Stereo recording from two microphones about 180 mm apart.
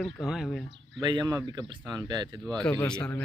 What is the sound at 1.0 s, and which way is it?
Speech, 25° right (ahead or behind).